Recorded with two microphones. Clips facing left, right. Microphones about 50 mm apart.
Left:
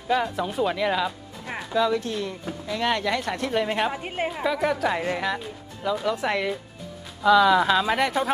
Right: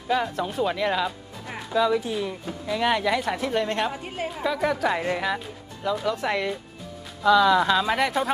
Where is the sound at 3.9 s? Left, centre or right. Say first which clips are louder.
Left 3 dB; left.